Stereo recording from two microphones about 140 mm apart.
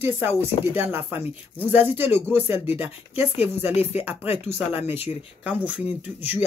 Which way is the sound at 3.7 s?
50° left (ahead or behind).